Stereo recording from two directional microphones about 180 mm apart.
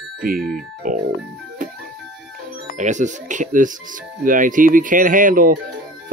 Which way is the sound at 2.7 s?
40° right (ahead or behind).